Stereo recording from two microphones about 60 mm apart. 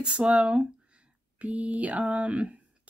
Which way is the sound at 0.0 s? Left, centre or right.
Centre.